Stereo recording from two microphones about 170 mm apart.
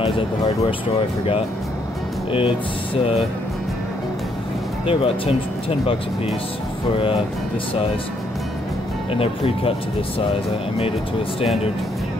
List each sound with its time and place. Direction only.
2.3 s speech: 30° left (ahead or behind)
4.8 s speech: 35° left (ahead or behind)
9.1 s speech: 35° left (ahead or behind)